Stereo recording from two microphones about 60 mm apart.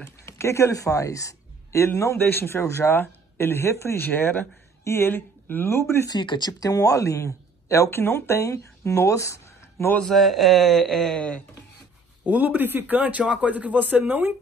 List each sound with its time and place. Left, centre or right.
0.2 s speech: left
2.1 s speech: left
2.9 s speech: left
4.0 s speech: left
6.6 s speech: left
8.0 s speech: left
8.4 s speech: left
9.9 s speech: centre
11.1 s speech: left
12.3 s speech: right
13.2 s a man's voice: centre
13.5 s speech: right